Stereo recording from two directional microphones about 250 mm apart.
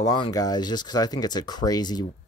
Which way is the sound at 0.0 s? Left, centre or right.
Centre.